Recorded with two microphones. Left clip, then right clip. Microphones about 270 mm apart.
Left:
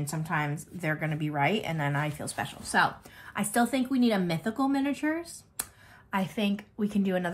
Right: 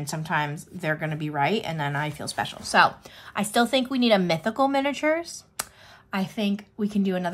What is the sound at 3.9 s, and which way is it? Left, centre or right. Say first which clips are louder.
Speech: right 6 dB; centre.